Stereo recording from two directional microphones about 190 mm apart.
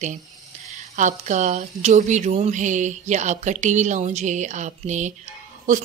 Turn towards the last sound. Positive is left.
turn(degrees=-45)  # may be behind; listen again after turning